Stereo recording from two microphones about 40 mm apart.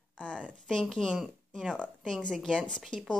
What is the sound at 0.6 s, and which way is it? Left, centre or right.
Speech, centre.